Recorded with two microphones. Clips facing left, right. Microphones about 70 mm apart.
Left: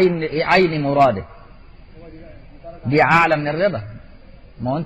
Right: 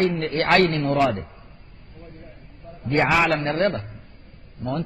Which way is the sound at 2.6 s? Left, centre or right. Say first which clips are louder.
Left 7 dB; left.